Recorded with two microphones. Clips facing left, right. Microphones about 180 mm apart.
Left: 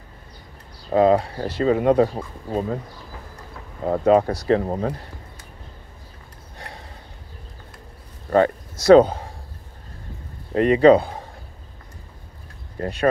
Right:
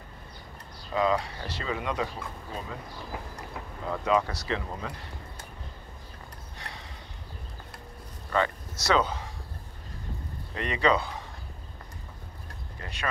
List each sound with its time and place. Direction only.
0.9 s speech: 50° left (ahead or behind)
3.8 s speech: 45° left (ahead or behind)
6.6 s sniff: 55° left (ahead or behind)
8.3 s speech: 50° left (ahead or behind)
10.5 s speech: 50° left (ahead or behind)
12.7 s speech: 45° left (ahead or behind)